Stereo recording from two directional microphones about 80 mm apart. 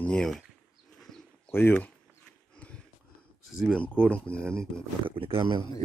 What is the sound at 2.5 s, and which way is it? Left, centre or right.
Horse, centre.